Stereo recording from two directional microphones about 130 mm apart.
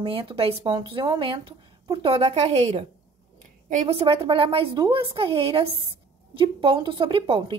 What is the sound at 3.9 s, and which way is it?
A woman's voice, 45° right (ahead or behind).